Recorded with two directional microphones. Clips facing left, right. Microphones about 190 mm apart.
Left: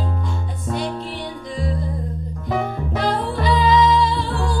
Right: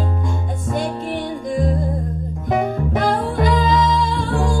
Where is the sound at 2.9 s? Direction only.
50° right (ahead or behind).